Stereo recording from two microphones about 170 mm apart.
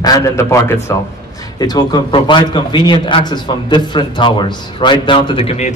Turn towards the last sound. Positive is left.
turn(degrees=35)  # may be behind; listen again after turning